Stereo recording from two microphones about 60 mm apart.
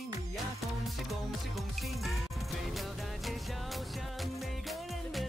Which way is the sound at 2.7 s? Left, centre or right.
Centre.